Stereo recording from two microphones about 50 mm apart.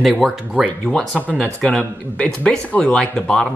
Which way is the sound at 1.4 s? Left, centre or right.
Centre.